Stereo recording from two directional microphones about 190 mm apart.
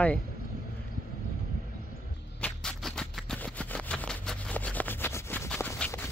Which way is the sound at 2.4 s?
5° left (ahead or behind).